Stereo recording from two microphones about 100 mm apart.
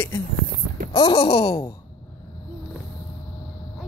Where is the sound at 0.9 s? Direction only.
65° left (ahead or behind).